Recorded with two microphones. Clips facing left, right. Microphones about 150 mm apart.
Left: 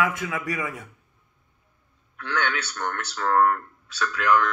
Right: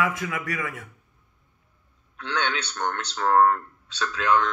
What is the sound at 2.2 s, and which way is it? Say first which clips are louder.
Speech: even; 20° right (ahead or behind).